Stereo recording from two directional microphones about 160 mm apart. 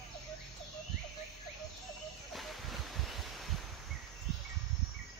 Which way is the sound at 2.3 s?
Centre (ahead or behind).